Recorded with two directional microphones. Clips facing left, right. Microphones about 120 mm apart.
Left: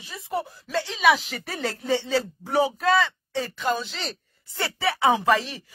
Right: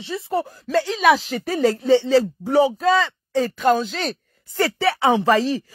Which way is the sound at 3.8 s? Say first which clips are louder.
Right 8 dB; 50° right (ahead or behind).